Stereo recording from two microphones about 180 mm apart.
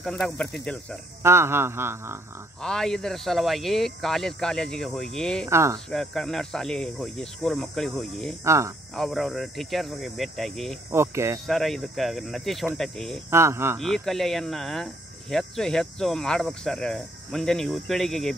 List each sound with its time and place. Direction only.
0.0 s speech: centre (ahead or behind)
1.2 s speech: 15° right (ahead or behind)
2.6 s speech: 5° left (ahead or behind)
5.5 s speech: 15° right (ahead or behind)
5.9 s speech: centre (ahead or behind)
8.5 s speech: 15° right (ahead or behind)
8.9 s speech: centre (ahead or behind)
10.9 s speech: 15° right (ahead or behind)
11.4 s speech: centre (ahead or behind)
13.3 s speech: 15° right (ahead or behind)
13.7 s speech: centre (ahead or behind)